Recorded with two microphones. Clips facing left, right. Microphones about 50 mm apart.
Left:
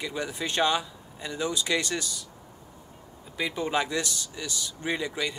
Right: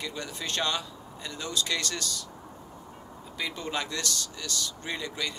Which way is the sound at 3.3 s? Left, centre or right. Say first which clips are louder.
Left 5 dB; centre.